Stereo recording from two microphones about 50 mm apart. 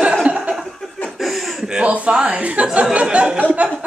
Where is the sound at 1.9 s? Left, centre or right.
Right.